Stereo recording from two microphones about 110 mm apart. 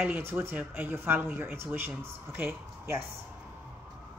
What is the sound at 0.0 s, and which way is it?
Speech, 20° right (ahead or behind).